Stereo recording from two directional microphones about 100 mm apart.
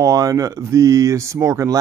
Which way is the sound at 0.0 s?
35° right (ahead or behind).